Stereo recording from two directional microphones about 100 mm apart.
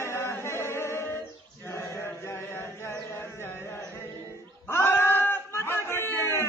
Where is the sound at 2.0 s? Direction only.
25° left (ahead or behind).